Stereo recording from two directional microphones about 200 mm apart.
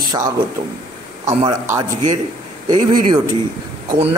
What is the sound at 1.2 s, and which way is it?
Speech, 15° right (ahead or behind).